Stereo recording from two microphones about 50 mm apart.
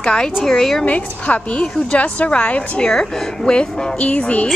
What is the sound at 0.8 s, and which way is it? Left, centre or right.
Speech, left.